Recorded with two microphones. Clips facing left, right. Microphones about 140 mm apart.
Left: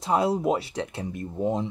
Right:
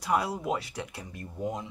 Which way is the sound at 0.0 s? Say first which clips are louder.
Left 6 dB; 25° left (ahead or behind).